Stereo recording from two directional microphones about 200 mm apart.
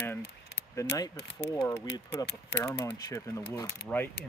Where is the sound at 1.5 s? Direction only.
15° left (ahead or behind).